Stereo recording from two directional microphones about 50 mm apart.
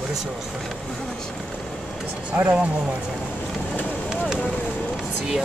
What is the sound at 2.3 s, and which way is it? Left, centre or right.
Speech, right.